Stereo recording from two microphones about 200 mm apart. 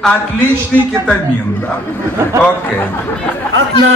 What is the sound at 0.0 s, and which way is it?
Speech, 10° left (ahead or behind).